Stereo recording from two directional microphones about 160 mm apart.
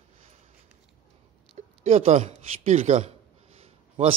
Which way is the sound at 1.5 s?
45° right (ahead or behind).